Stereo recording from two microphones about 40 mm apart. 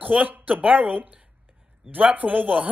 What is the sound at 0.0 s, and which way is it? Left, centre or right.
A man's voice, right.